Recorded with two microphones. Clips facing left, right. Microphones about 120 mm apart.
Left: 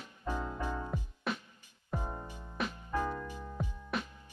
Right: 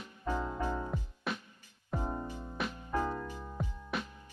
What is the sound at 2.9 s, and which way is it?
Music, 25° right (ahead or behind).